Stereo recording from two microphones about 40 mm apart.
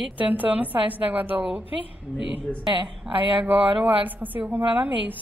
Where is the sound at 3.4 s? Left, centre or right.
Right.